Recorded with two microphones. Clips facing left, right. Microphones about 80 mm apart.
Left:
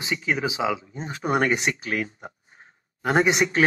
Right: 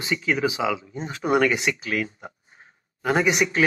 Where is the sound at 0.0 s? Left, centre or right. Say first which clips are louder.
Right 2 dB; left.